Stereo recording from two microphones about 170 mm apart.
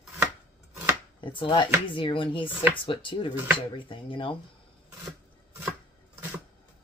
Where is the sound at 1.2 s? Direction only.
30° left (ahead or behind).